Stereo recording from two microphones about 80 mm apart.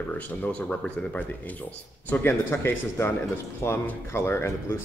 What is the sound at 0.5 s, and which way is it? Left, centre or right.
Speech, centre.